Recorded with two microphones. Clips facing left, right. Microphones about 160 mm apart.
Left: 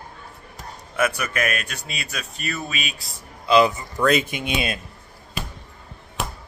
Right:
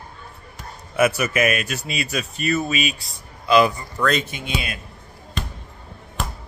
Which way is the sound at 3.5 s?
25° left (ahead or behind).